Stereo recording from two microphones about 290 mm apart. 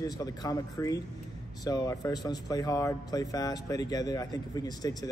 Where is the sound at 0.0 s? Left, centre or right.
Centre.